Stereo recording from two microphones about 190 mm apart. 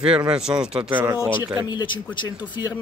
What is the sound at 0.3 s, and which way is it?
Speech, 5° right (ahead or behind).